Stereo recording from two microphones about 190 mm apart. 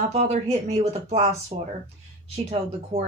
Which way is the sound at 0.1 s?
35° right (ahead or behind).